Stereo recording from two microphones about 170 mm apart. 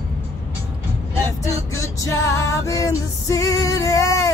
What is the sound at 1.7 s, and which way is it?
Music, 15° left (ahead or behind).